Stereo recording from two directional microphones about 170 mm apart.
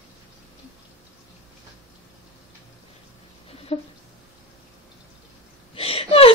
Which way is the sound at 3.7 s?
35° left (ahead or behind).